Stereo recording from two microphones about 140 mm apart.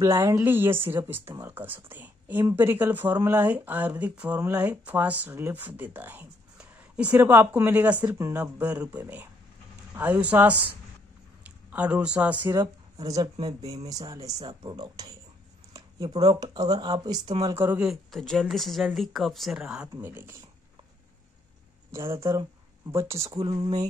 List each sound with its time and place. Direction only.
0.0 s a woman's voice: 25° right (ahead or behind)
12.4 s speech: 25° right (ahead or behind)
15.7 s a sound: 25° right (ahead or behind)
16.3 s speech: 30° right (ahead or behind)
17.6 s speech: 15° right (ahead or behind)
17.8 s speech: centre (ahead or behind); by 20.4 s 15° right (ahead or behind)
21.9 s speech: 20° right (ahead or behind)